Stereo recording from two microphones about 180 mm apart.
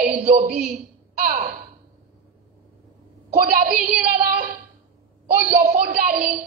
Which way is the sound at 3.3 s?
60° right (ahead or behind).